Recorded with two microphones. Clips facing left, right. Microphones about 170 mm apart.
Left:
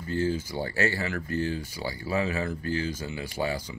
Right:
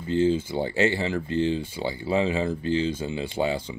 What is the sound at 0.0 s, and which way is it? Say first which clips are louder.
Speech: right 6 dB; 25° right (ahead or behind).